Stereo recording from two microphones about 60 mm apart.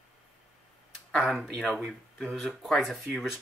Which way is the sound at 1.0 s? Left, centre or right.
Centre.